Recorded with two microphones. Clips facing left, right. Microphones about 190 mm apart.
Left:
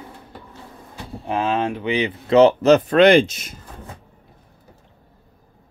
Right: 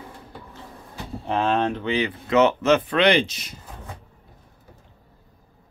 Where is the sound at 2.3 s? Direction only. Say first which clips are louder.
Left 6 dB; 35° left (ahead or behind); by 3.5 s 50° left (ahead or behind).